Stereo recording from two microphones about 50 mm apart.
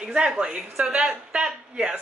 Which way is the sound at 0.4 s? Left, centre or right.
Centre.